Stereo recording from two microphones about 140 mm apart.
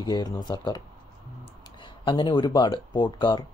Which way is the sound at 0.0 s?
30° left (ahead or behind).